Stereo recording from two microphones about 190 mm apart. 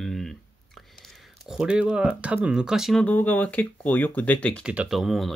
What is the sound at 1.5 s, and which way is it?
Speech, 5° right (ahead or behind).